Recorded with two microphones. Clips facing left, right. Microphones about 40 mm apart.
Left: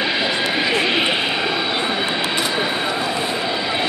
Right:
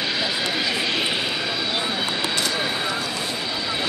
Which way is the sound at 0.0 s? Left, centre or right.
Left.